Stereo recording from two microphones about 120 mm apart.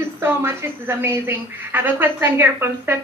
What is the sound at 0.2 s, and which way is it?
A woman's voice, 20° right (ahead or behind).